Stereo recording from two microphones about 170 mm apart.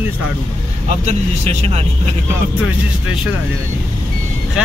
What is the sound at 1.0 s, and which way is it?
Speech, 40° right (ahead or behind).